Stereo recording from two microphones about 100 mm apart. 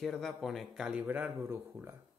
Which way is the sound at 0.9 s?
15° right (ahead or behind).